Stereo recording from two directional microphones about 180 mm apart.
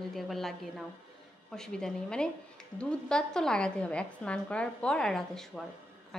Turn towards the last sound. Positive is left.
turn(degrees=0)  # may be behind; listen again after turning